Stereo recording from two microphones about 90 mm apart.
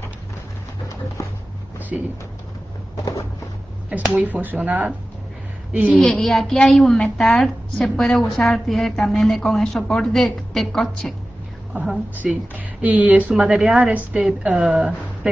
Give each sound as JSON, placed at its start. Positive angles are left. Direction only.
{"t": 1.9, "sound": "a woman's voice", "side_deg": -5}
{"t": 4.1, "sound": "a woman's voice", "side_deg": -20}
{"t": 5.9, "sound": "a woman's voice", "side_deg": 5}
{"t": 11.7, "sound": "a woman's voice", "side_deg": -5}
{"t": 13.3, "sound": "a woman's voice", "side_deg": -5}